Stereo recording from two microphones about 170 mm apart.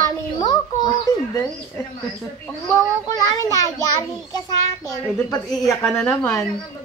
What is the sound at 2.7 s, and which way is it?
Speech, 20° left (ahead or behind).